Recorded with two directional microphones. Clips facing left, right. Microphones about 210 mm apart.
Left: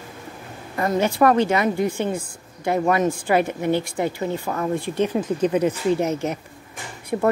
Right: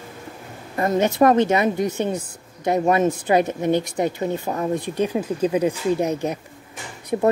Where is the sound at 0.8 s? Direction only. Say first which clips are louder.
Right 2 dB; 20° right (ahead or behind).